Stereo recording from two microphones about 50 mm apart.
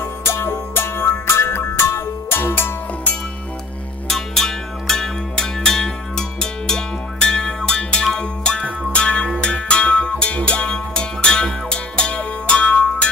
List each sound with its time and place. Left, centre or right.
0.0 s music: left
4.1 s music: centre